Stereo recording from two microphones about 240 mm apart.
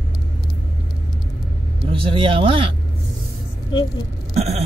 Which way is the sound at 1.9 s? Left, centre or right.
Right.